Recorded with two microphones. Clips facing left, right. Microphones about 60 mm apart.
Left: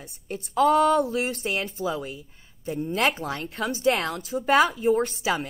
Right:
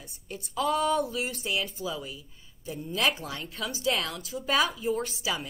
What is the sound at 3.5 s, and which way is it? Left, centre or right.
Speech, left.